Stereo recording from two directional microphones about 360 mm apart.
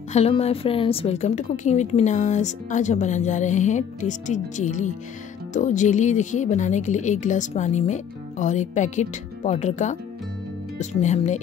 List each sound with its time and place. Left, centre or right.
0.1 s a woman's voice: centre